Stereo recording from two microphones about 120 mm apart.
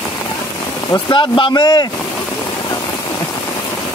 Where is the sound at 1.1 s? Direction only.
45° left (ahead or behind).